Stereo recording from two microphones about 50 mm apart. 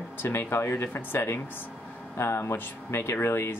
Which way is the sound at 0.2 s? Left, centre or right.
Left.